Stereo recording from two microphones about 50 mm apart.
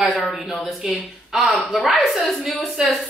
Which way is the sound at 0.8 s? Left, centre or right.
Centre.